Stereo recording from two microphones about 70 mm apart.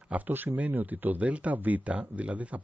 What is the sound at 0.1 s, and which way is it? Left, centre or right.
A man's voice, right.